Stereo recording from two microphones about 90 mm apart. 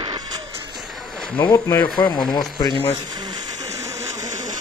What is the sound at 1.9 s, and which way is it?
Speech, 60° left (ahead or behind).